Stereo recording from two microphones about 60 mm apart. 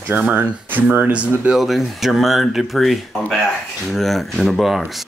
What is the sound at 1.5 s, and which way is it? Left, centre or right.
Speech, centre.